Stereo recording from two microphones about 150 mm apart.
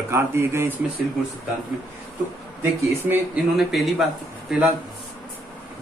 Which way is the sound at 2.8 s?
15° right (ahead or behind).